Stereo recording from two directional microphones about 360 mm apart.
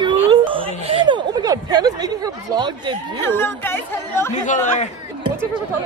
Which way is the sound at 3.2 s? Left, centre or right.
Centre.